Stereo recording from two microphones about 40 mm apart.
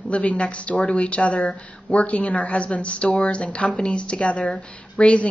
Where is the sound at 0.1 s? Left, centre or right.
Left.